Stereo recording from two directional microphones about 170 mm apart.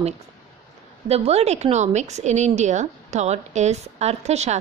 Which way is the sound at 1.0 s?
35° right (ahead or behind).